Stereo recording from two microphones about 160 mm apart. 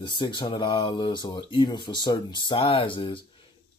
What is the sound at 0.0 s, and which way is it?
Speech, 30° left (ahead or behind).